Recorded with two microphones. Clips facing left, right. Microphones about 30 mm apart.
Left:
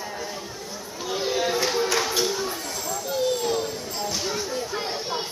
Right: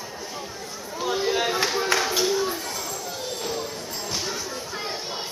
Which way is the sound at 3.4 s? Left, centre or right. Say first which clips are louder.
Left 4 dB; centre.